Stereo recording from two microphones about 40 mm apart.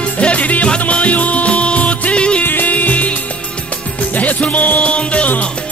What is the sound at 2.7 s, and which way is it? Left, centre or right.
Music, left.